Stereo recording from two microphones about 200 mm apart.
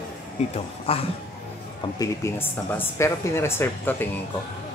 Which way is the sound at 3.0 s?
10° left (ahead or behind).